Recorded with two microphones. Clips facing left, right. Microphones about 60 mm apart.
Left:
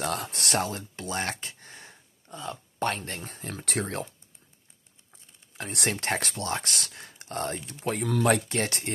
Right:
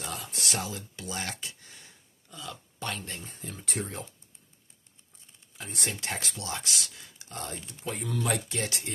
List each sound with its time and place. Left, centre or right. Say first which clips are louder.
0.0 s speech: left 6 dB; left
5.6 s speech: left 5 dB; left